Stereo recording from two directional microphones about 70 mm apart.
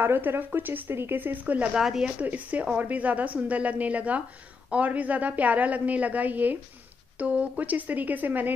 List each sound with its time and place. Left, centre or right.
0.0 s speech: right
1.7 s speech: centre
2.1 s speech: right